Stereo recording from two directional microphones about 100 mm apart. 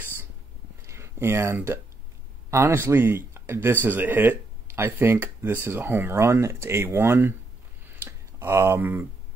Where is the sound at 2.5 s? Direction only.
25° right (ahead or behind).